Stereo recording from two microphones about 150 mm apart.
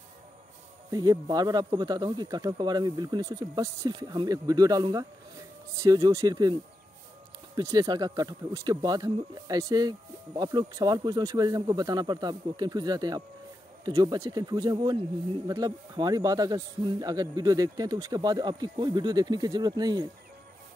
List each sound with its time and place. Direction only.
0.8 s speech: 25° right (ahead or behind)
7.5 s speech: 25° right (ahead or behind)